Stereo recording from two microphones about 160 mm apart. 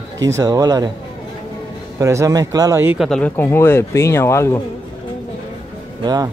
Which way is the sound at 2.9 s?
5° left (ahead or behind).